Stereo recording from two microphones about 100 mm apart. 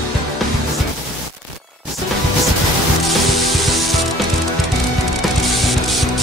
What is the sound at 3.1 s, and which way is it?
Music, centre (ahead or behind).